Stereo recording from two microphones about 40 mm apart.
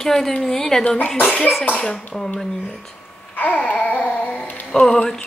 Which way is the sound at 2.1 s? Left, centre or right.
Centre.